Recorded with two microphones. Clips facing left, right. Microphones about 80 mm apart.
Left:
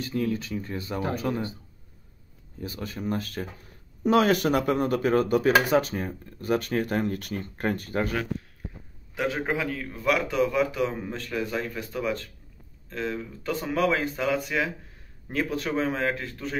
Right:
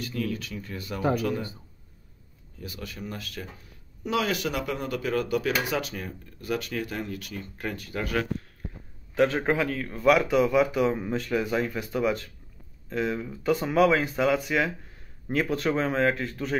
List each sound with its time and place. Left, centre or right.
0.0 s speech: left
2.6 s speech: left
9.1 s a man's voice: centre